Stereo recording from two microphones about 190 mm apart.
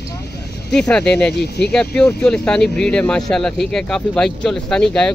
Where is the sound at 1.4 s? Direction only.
60° left (ahead or behind).